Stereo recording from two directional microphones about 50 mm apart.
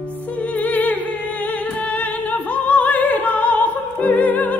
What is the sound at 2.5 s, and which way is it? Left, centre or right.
Opera, left.